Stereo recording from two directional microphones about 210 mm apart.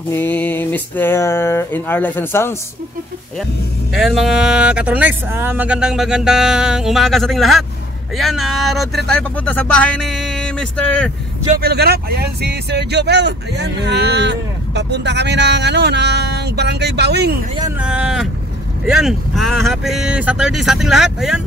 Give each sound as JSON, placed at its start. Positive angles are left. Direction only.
{"t": 0.1, "sound": "speech", "side_deg": 10}
{"t": 3.9, "sound": "speech", "side_deg": 0}
{"t": 11.4, "sound": "speech", "side_deg": -45}
{"t": 17.7, "sound": "speech", "side_deg": -5}